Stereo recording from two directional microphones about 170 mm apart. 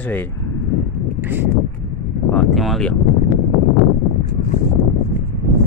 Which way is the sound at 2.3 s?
Centre (ahead or behind).